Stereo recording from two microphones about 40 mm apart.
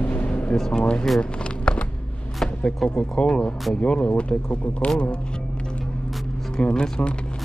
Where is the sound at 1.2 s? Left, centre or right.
Left.